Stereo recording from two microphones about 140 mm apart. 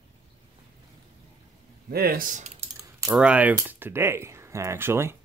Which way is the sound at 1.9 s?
90° right.